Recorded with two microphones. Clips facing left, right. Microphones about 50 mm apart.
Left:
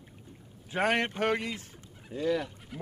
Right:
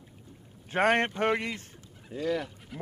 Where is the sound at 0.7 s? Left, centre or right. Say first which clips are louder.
Right 3 dB; right.